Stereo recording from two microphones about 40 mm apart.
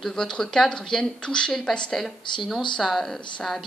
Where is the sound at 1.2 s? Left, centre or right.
Left.